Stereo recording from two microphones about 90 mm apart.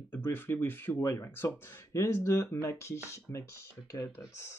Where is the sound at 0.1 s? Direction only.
25° left (ahead or behind).